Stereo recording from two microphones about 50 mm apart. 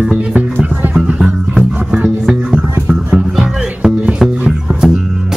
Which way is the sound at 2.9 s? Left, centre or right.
Centre.